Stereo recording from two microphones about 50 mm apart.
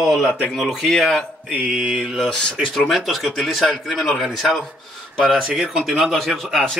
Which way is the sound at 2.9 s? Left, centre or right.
Centre.